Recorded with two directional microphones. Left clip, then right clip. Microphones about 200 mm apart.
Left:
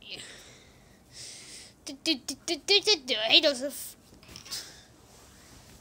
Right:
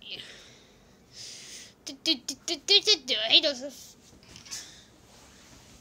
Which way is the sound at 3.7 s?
35° left (ahead or behind).